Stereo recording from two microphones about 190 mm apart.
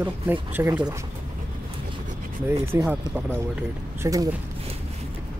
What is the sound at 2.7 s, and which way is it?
Speech, 10° right (ahead or behind).